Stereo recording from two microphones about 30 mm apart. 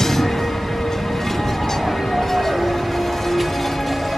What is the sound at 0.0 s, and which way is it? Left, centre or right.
Music, centre.